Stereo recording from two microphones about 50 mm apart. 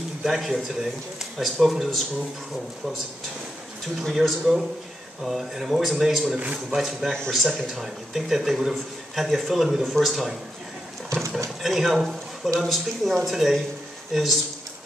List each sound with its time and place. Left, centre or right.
0.2 s speech: centre
4.0 s speech: centre
6.3 s speech: right
6.7 s speech: centre
7.1 s speech: centre
7.3 s speech: centre
11.1 s a sound: right
11.6 s speech: centre